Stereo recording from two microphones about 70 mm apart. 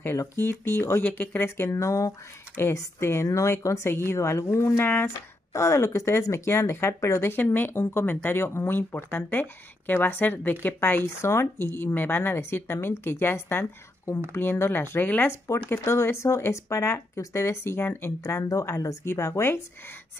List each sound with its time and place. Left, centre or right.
0.2 s speech: left
1.0 s speech: left
1.6 s speech: left
2.5 s speech: left
3.3 s speech: left
5.5 s speech: left
15.4 s speech: left
19.0 s speech: left